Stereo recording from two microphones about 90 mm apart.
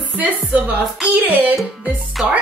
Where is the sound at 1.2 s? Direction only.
20° right (ahead or behind).